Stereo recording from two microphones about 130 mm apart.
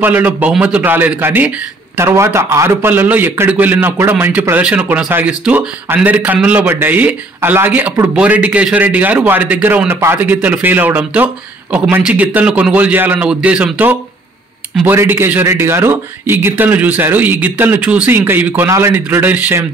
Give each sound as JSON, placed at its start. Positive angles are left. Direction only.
{"t": 0.0, "sound": "a man's voice", "side_deg": -10}
{"t": 14.9, "sound": "a man's voice", "side_deg": -15}